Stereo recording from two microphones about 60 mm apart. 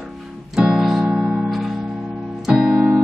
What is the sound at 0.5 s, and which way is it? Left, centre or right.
Music, centre.